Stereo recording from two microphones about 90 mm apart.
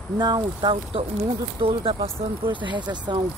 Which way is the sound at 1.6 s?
80° right.